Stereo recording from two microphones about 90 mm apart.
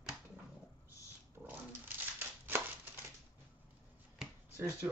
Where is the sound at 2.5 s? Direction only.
25° right (ahead or behind).